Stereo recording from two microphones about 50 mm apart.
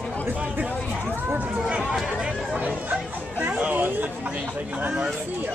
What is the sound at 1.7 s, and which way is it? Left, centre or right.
Speech, centre.